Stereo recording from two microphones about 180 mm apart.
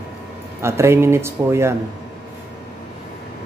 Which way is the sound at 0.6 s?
15° right (ahead or behind).